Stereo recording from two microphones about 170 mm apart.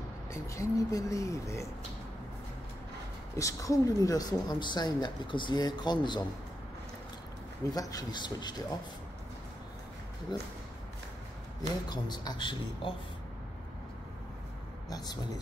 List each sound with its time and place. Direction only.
0.3 s a woman's voice: 20° left (ahead or behind)
3.3 s a woman's voice: 20° left (ahead or behind)
7.7 s a woman's voice: 25° left (ahead or behind)
10.3 s a woman's voice: 25° left (ahead or behind)
11.9 s a woman's voice: 25° left (ahead or behind)
14.9 s speech: 25° left (ahead or behind)